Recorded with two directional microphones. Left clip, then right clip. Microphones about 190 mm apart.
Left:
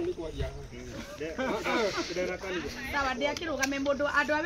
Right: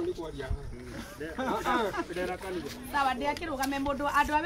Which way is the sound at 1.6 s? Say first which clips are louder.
Even; 5° right (ahead or behind).